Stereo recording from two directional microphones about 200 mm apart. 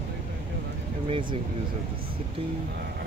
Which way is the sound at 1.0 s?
25° right (ahead or behind).